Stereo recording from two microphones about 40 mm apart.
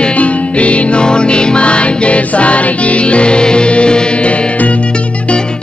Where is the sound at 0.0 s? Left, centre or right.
Left.